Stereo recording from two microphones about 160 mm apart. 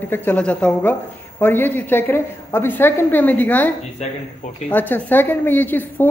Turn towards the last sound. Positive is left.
turn(degrees=10)  # may be behind; listen again after turning